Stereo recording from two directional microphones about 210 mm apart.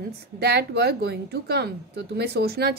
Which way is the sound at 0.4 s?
50° right (ahead or behind).